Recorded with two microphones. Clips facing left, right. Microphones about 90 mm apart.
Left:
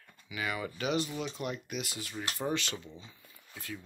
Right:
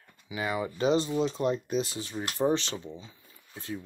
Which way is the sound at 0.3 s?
25° right (ahead or behind).